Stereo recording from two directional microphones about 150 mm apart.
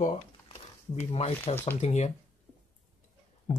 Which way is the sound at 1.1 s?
40° left (ahead or behind).